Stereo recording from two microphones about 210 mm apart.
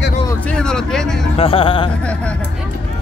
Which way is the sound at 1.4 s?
25° left (ahead or behind).